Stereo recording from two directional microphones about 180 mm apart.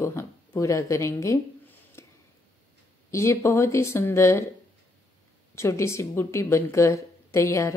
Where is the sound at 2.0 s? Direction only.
15° left (ahead or behind).